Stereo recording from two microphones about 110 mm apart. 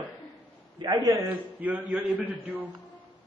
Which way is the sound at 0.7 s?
45° right (ahead or behind).